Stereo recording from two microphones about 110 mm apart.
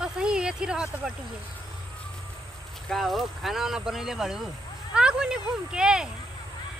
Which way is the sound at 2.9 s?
Centre (ahead or behind).